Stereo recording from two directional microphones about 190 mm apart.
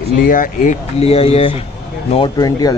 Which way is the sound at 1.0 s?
30° left (ahead or behind).